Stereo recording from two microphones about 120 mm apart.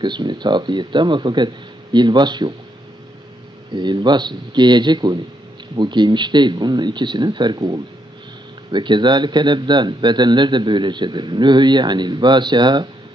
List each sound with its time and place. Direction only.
0.0 s a man's voice: 40° right (ahead or behind)
3.7 s a man's voice: 40° right (ahead or behind)